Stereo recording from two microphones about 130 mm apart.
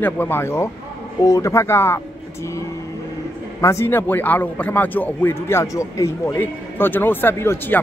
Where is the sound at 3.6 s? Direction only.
20° left (ahead or behind).